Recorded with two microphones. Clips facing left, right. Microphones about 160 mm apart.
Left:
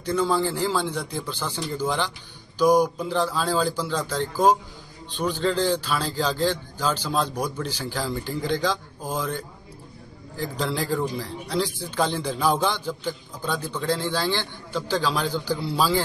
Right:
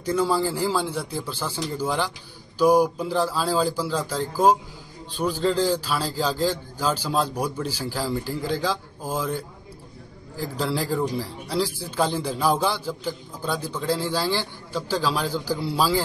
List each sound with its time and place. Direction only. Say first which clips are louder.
0.0 s speech: even; 10° right (ahead or behind)